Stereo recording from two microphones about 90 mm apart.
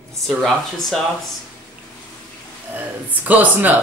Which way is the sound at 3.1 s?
20° right (ahead or behind).